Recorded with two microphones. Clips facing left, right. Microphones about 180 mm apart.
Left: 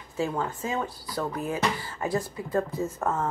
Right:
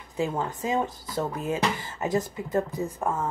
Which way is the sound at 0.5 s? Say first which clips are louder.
Right 3 dB; 20° right (ahead or behind).